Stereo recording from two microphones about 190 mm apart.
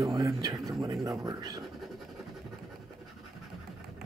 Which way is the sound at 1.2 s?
20° right (ahead or behind).